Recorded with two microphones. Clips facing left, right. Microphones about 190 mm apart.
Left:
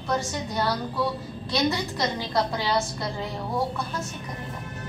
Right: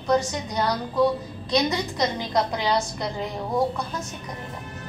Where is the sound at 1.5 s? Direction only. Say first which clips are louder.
Right 2 dB; 20° right (ahead or behind).